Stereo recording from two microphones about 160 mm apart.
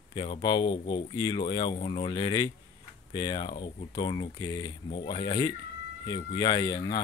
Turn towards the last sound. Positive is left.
turn(degrees=25)  # may be behind; listen again after turning